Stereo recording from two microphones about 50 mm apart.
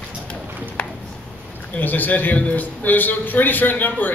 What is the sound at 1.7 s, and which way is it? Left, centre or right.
A man's voice, left.